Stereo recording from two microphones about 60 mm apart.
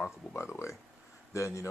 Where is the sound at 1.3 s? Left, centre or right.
Left.